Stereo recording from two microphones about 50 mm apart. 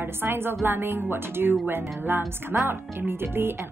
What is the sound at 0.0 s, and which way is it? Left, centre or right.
Speech, right.